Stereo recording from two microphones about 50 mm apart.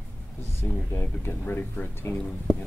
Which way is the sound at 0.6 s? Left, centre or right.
Left.